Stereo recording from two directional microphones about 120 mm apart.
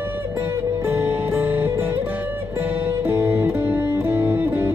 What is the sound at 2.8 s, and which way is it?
Music, 20° right (ahead or behind).